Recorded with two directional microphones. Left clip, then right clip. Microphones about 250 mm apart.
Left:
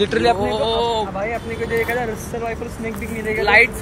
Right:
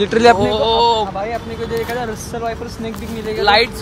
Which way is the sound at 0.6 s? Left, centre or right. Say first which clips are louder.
Right 5 dB; right.